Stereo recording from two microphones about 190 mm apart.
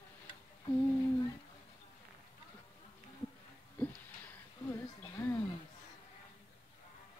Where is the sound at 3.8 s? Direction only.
10° left (ahead or behind).